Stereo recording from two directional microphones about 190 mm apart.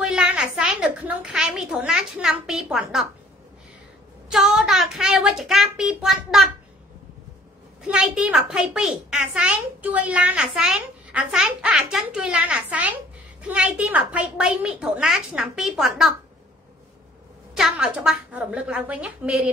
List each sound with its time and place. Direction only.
0.0 s a sound: 5° right (ahead or behind)
4.3 s a child's voice: centre (ahead or behind)
7.8 s a child's voice: 5° right (ahead or behind)
17.6 s a child's voice: centre (ahead or behind)